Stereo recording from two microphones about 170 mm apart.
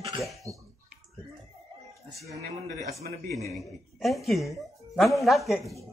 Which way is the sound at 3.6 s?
Centre (ahead or behind).